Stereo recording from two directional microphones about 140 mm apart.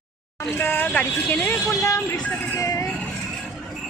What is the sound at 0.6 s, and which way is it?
Speech, 15° left (ahead or behind).